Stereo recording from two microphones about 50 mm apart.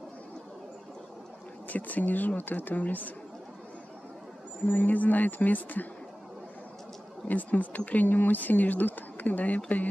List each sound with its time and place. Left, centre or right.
1.7 s speech: left
4.6 s speech: left
7.2 s speech: left